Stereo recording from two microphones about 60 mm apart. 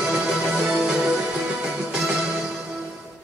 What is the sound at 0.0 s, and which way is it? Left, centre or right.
Music, centre.